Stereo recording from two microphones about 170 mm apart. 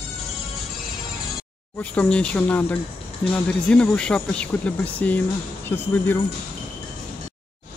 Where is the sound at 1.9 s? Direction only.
5° left (ahead or behind).